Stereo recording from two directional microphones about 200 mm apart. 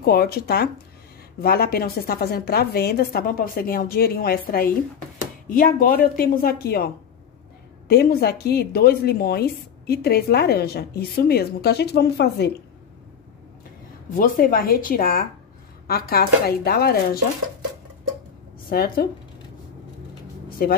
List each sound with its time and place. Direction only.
0.0 s speech: 50° left (ahead or behind)
7.9 s speech: 50° left (ahead or behind)
14.1 s speech: 45° left (ahead or behind)
18.7 s speech: 50° left (ahead or behind)
20.4 s a sound: 45° left (ahead or behind)